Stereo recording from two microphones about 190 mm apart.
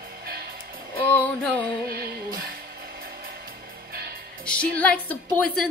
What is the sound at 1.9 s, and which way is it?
Music, 55° right (ahead or behind).